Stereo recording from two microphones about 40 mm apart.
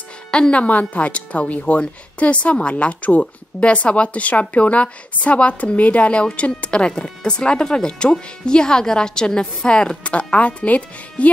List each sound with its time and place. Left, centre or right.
0.3 s speech: left
0.7 s a woman's voice: left